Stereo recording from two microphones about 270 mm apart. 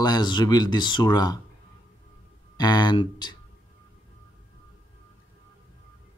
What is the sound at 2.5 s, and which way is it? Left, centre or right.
Speech, centre.